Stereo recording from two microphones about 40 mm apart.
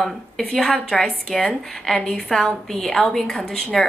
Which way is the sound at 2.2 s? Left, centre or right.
Centre.